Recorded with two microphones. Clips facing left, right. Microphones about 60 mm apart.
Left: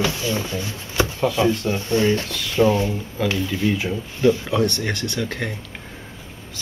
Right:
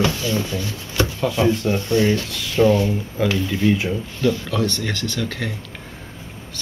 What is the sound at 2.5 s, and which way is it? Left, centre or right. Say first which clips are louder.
Speech: right 2 dB; centre.